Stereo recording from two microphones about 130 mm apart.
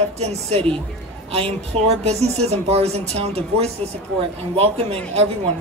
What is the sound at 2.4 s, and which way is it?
A man's voice, 55° right (ahead or behind).